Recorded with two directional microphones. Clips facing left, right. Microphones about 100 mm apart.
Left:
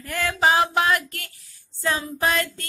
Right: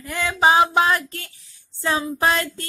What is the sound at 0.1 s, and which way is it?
Mantra, 15° right (ahead or behind).